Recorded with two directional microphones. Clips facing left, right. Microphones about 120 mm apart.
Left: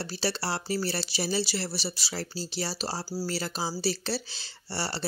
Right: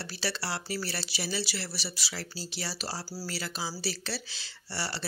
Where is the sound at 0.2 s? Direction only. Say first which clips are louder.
Left 3 dB; 30° left (ahead or behind).